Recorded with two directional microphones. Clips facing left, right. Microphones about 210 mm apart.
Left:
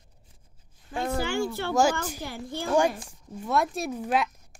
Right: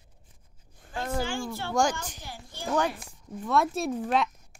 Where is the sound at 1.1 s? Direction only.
65° left (ahead or behind).